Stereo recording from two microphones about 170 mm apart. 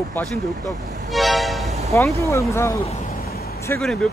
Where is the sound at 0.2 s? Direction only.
10° left (ahead or behind).